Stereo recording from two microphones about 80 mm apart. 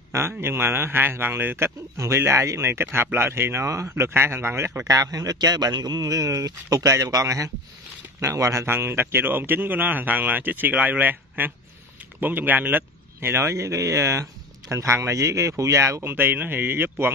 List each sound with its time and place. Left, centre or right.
0.1 s a man's voice: right
4.8 s a man's voice: right